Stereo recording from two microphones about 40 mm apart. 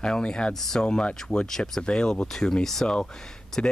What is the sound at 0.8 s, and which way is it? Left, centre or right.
Speech, left.